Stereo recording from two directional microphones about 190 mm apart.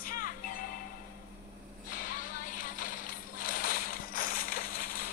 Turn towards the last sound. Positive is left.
turn(degrees=50)  # may be behind; listen again after turning